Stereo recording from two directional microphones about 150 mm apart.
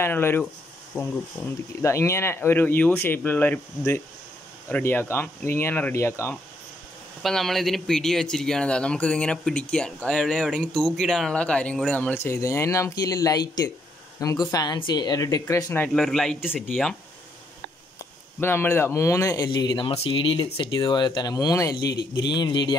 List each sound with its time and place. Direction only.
0.0 s speech: 15° left (ahead or behind)
7.2 s speech: centre (ahead or behind)
15.9 s speech: 5° left (ahead or behind)
18.4 s speech: 15° left (ahead or behind)